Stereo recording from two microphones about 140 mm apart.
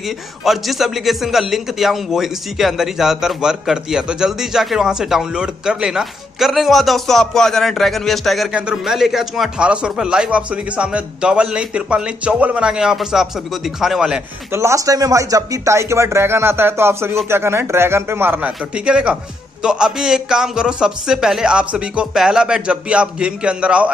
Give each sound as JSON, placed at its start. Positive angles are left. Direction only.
{"t": 0.5, "sound": "a man's voice", "side_deg": 0}
{"t": 14.5, "sound": "a man's voice", "side_deg": -20}